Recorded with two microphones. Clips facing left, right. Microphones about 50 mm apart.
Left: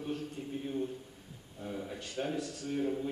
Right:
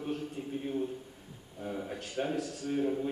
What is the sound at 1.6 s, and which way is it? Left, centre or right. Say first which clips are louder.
Speech: right 2 dB; centre.